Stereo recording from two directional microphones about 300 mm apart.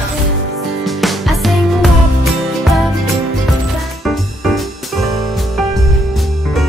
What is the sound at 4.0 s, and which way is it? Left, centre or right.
Music, centre.